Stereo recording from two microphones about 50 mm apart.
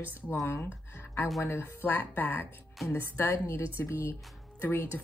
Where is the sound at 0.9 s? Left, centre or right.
Left.